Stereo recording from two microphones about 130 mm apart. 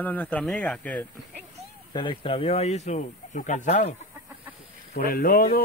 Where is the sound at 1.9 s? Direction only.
40° left (ahead or behind); by 3.9 s 65° left (ahead or behind).